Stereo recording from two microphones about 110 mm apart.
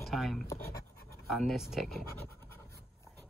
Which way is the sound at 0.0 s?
Centre (ahead or behind).